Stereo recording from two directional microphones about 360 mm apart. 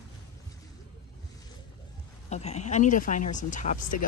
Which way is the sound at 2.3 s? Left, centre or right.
Centre.